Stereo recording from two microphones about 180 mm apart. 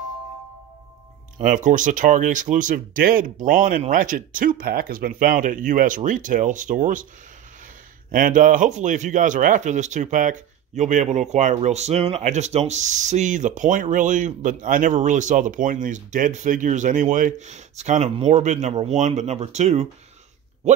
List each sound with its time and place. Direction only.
1.4 s speech: 45° right (ahead or behind)
8.1 s speech: 50° right (ahead or behind)